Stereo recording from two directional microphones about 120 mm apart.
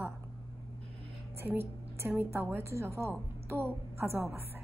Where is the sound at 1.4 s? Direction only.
20° right (ahead or behind).